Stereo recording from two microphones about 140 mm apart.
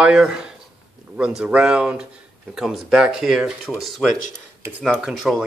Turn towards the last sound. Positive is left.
turn(degrees=0)  # may be behind; listen again after turning